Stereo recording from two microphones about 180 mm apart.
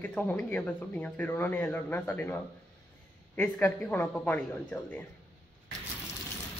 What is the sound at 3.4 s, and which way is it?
Speech, 10° left (ahead or behind).